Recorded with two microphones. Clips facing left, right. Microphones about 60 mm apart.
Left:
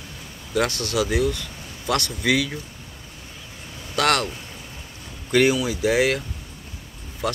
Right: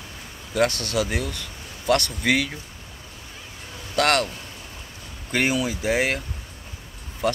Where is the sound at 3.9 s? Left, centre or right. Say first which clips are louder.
Even; right.